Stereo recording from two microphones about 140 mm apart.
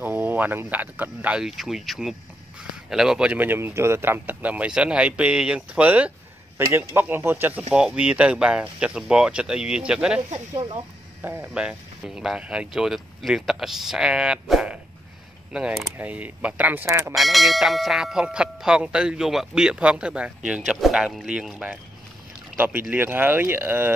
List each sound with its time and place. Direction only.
0.0 s speech: 15° right (ahead or behind)
11.2 s speech: 10° right (ahead or behind)
17.1 s speech: centre (ahead or behind)